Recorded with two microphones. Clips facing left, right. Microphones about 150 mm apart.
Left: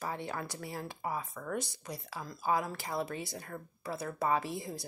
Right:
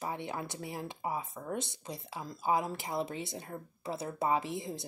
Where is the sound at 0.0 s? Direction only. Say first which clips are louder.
Even; 20° right (ahead or behind).